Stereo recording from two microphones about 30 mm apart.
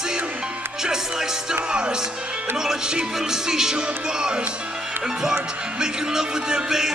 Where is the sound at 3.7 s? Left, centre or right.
Right.